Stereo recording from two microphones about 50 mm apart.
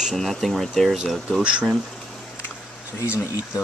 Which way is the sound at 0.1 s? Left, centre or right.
Centre.